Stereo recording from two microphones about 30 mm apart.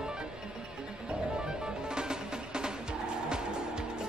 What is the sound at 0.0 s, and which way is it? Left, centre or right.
Music, right.